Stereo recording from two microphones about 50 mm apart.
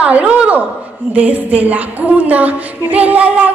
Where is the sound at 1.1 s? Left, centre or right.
Right.